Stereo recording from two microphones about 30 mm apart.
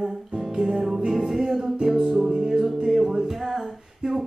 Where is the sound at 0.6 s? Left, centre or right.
Centre.